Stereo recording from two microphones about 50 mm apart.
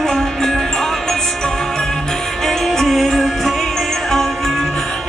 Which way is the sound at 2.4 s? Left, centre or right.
Centre.